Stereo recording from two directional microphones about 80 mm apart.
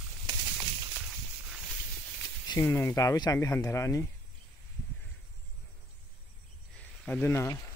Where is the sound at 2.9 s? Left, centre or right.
Left.